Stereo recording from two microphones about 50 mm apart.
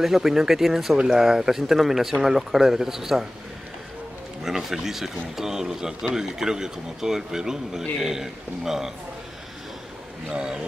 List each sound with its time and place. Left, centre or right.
0.0 s a man's voice: centre
4.4 s a man's voice: centre
10.3 s a man's voice: centre